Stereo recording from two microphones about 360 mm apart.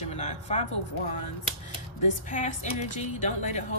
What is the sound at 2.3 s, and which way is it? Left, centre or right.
Speech, left.